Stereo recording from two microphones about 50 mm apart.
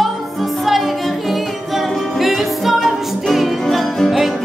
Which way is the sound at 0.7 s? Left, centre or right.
Centre.